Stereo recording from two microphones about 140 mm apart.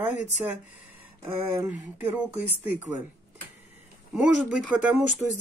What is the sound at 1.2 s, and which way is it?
Speech, 15° right (ahead or behind).